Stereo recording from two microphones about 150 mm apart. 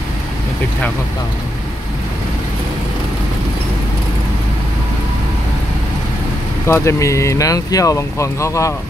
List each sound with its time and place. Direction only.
6.7 s speech: 20° left (ahead or behind)